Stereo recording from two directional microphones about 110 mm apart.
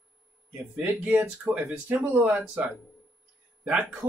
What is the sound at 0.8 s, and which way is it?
Speech, 10° right (ahead or behind).